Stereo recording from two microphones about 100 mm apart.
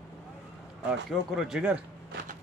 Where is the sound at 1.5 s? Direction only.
10° right (ahead or behind).